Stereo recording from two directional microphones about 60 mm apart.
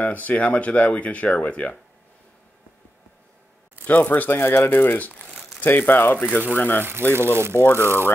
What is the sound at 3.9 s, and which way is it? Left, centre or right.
Speech, left.